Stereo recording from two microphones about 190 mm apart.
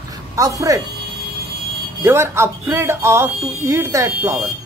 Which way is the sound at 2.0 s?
10° right (ahead or behind).